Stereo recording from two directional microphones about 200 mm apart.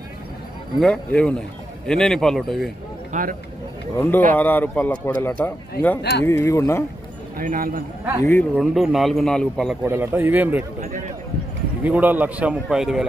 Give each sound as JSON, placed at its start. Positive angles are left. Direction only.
{"t": 0.7, "sound": "speech", "side_deg": 5}
{"t": 3.1, "sound": "speech", "side_deg": -40}
{"t": 3.9, "sound": "speech", "side_deg": 15}
{"t": 7.3, "sound": "a man's voice", "side_deg": -45}
{"t": 8.2, "sound": "speech", "side_deg": 10}
{"t": 8.5, "sound": "speech", "side_deg": 0}
{"t": 9.8, "sound": "speech", "side_deg": -10}
{"t": 11.8, "sound": "speech", "side_deg": -10}